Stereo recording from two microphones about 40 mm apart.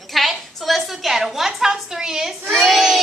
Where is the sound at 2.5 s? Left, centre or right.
Centre.